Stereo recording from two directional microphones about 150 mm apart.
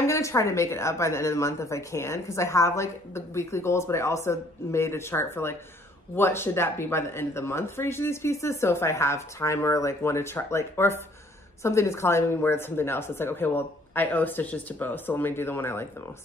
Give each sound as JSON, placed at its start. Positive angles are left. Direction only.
{"t": 0.0, "sound": "a woman's voice", "side_deg": 20}